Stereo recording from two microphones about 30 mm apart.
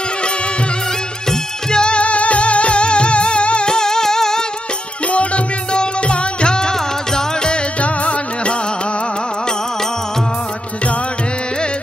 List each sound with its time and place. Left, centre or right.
1.3 s music: left
2.0 s music: left
3.7 s music: left
5.1 s music: left
5.8 s music: left
7.8 s music: left